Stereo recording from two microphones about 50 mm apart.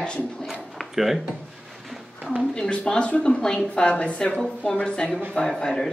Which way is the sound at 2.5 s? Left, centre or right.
Left.